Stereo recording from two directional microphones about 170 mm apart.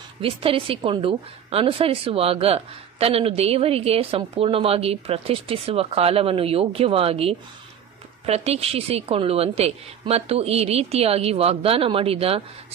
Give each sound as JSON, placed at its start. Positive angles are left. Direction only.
{"t": 0.2, "sound": "a woman's voice", "side_deg": -30}